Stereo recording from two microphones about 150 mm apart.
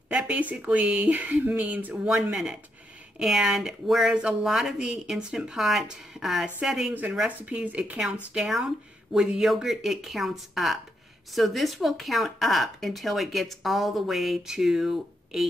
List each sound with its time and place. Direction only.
0.1 s speech: 10° right (ahead or behind)